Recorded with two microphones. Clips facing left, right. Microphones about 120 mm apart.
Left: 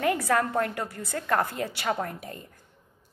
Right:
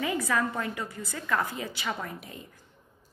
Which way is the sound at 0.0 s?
60° left (ahead or behind).